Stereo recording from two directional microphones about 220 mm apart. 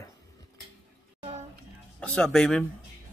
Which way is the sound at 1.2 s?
30° right (ahead or behind).